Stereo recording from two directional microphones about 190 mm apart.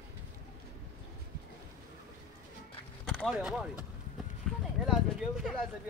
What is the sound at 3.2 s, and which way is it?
Speech, 5° right (ahead or behind).